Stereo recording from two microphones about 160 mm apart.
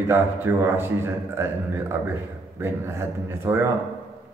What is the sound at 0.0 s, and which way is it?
A man's voice, 15° right (ahead or behind).